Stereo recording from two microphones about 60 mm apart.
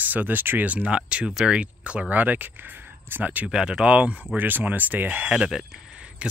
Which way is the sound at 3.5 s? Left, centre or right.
Centre.